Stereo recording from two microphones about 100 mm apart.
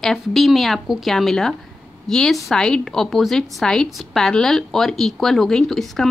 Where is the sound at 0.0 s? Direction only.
5° left (ahead or behind).